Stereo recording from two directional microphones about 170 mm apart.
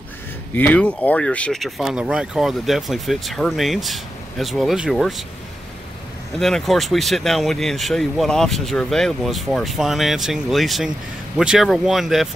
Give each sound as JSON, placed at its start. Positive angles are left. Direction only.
{"t": 0.6, "sound": "speech", "side_deg": 10}
{"t": 6.4, "sound": "speech", "side_deg": 0}